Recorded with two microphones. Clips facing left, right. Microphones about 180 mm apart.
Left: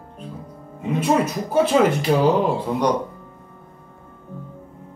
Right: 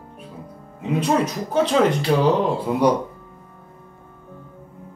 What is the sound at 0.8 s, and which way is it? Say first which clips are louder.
Speech: left 1 dB; 5° left (ahead or behind).